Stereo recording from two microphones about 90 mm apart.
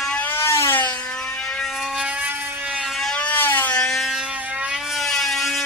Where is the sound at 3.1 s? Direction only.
20° left (ahead or behind).